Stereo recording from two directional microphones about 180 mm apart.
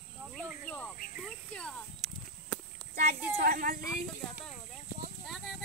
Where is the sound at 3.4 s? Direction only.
50° right (ahead or behind).